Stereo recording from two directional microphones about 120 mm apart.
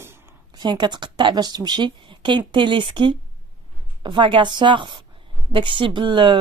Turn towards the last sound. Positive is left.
turn(degrees=-40)  # may be behind; listen again after turning